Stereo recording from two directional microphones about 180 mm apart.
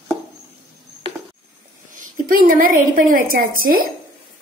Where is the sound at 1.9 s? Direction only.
50° right (ahead or behind).